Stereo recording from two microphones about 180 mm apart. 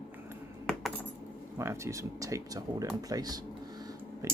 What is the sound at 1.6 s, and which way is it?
Speech, 15° right (ahead or behind).